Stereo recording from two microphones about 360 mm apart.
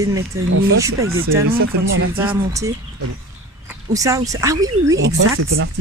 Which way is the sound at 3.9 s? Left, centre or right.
Centre.